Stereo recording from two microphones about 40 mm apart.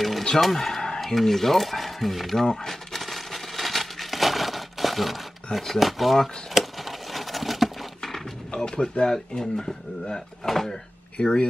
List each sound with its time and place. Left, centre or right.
0.4 s a sound: centre
1.0 s speech: centre
2.4 s speech: left
2.7 s a sound: centre
8.5 s speech: centre
11.2 s speech: left